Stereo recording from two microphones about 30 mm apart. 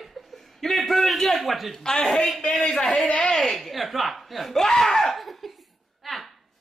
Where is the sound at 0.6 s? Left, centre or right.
Centre.